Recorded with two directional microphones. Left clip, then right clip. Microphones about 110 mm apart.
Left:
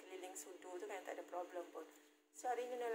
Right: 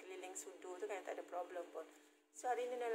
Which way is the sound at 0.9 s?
20° right (ahead or behind).